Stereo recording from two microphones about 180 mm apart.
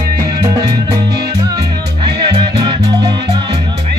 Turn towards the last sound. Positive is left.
turn(degrees=-25)  # may be behind; listen again after turning